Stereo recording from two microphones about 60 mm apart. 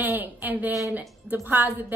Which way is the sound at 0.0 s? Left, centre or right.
Right.